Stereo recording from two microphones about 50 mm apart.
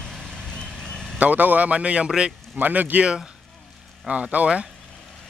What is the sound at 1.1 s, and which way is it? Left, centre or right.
Speech, right.